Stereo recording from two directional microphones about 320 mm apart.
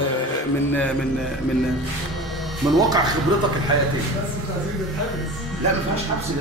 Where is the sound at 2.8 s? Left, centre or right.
Centre.